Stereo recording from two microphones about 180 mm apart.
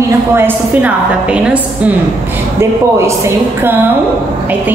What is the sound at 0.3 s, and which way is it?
A woman's voice, 10° right (ahead or behind).